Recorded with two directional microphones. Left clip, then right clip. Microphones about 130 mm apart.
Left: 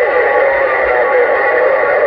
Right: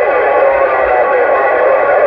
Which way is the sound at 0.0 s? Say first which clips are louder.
Right 1 dB; 20° left (ahead or behind).